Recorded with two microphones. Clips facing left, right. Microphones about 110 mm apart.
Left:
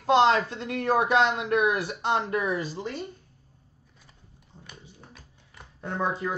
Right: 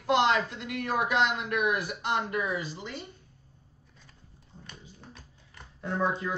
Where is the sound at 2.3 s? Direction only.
40° left (ahead or behind).